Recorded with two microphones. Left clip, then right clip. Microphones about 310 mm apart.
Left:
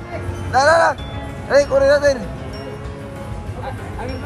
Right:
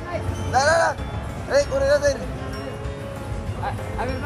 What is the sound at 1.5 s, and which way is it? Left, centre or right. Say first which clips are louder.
Speech: left 6 dB; centre.